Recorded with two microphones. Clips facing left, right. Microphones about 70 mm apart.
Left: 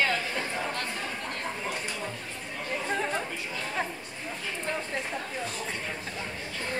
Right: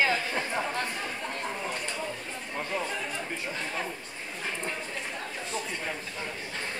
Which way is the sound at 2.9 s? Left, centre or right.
Left.